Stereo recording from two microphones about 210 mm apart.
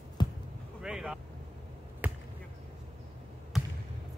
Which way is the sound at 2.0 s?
5° right (ahead or behind).